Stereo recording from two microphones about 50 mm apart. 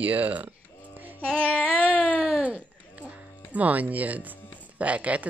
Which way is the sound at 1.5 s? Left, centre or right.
Left.